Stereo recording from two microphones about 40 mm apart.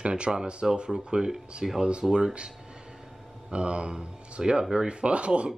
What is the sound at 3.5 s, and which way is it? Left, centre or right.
Speech, right.